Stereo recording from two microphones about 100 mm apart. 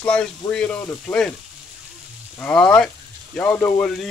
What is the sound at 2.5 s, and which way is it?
Speech, 10° left (ahead or behind).